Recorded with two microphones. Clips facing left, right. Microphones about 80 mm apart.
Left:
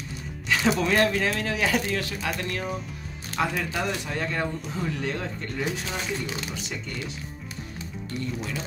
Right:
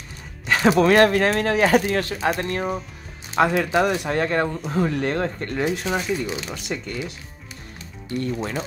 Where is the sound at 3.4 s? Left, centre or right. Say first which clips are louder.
Right 9 dB; right.